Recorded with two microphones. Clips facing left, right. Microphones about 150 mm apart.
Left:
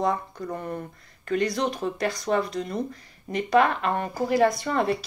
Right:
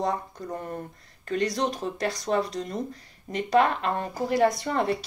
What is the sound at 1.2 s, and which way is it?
Speech, 35° right (ahead or behind).